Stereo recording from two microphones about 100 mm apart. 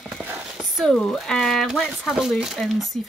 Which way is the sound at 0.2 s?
20° right (ahead or behind).